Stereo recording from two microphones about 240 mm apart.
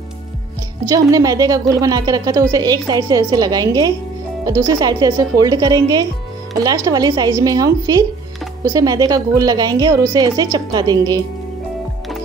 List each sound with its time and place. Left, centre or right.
0.9 s a woman's voice: centre